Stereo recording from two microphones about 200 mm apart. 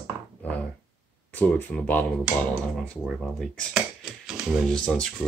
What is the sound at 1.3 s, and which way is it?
Speech, 5° left (ahead or behind).